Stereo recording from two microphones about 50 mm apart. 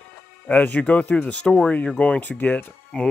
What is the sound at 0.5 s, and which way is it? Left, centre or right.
Speech, left.